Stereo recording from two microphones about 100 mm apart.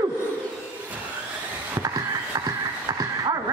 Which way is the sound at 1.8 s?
35° right (ahead or behind).